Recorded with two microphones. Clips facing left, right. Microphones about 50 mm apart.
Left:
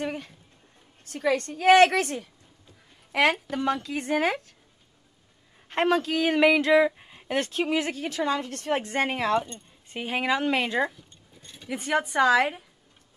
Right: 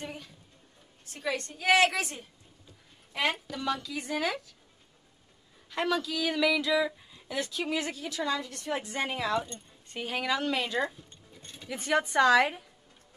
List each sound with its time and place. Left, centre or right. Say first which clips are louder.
0.0 s speech: left 9 dB; left
3.1 s speech: left 8 dB; left
3.4 s speech: left 5 dB; left
5.7 s speech: left 6 dB; left
7.6 s a woman's voice: left 5 dB; left
9.8 s a woman's voice: left 5 dB; left
11.8 s a woman's voice: left 1 dB; centre